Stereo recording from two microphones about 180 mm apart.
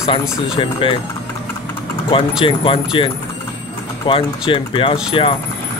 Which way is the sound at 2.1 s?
30° left (ahead or behind).